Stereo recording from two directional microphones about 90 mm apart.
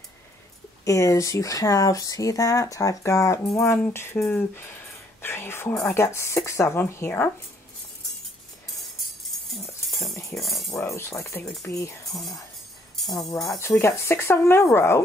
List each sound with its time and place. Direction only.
0.8 s speech: 35° left (ahead or behind)
9.5 s music: centre (ahead or behind)
10.7 s speech: 30° left (ahead or behind)
12.1 s speech: centre (ahead or behind)
13.6 s speech: 30° left (ahead or behind)